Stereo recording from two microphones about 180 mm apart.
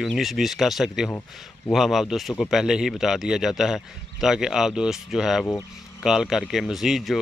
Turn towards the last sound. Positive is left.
turn(degrees=0)  # may be behind; listen again after turning